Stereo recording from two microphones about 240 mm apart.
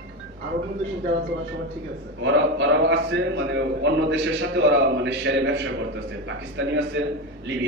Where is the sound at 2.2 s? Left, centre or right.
Right.